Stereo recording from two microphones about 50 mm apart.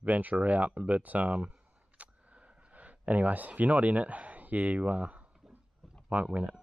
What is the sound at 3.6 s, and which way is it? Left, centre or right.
Speech, right.